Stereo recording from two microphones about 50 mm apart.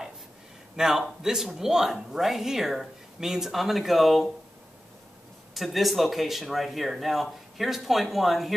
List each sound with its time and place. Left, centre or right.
0.7 s speech: centre
5.5 s speech: centre